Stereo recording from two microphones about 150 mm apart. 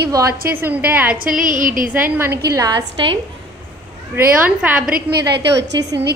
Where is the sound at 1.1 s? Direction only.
65° right (ahead or behind).